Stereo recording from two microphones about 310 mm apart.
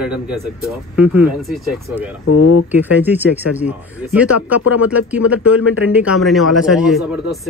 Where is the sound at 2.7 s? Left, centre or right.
Centre.